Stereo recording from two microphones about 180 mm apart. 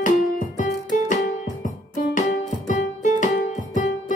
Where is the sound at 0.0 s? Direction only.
45° left (ahead or behind).